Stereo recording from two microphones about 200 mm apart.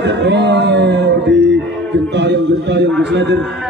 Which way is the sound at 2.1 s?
60° right (ahead or behind).